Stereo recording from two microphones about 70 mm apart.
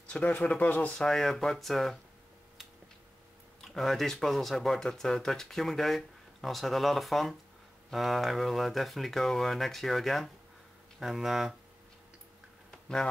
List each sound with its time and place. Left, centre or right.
0.1 s speech: centre
0.9 s speech: centre
3.6 s speech: centre
12.7 s a sound: centre